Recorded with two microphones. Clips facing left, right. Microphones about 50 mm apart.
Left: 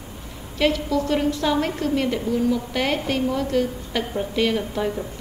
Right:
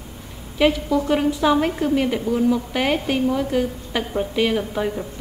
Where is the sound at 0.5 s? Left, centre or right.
Centre.